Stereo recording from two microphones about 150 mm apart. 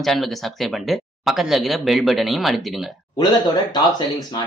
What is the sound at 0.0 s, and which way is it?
Speech, centre (ahead or behind).